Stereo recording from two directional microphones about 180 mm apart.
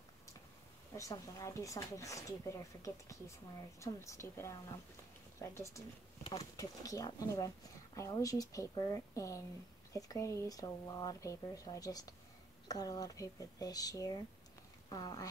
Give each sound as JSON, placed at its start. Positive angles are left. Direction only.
{"t": 0.9, "sound": "speech", "side_deg": 20}